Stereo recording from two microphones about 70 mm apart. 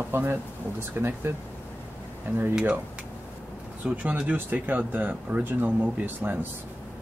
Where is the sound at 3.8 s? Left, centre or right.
Right.